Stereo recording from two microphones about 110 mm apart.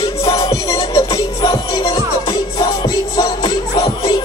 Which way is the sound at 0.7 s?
55° left (ahead or behind).